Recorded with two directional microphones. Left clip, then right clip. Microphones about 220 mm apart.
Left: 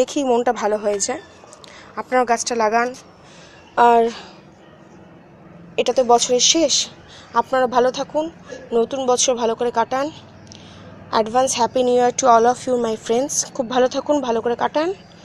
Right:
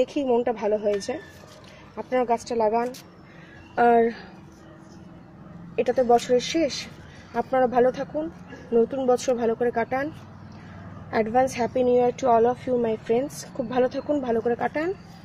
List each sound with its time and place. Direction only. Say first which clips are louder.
0.0 s speech: left 5 dB; centre (ahead or behind)
0.9 s a woman's voice: left 5 dB; 30° left (ahead or behind)
2.2 s speech: left 5 dB; centre (ahead or behind)
5.8 s speech: left 5 dB; 5° right (ahead or behind)
11.1 s speech: left 5 dB; 5° right (ahead or behind)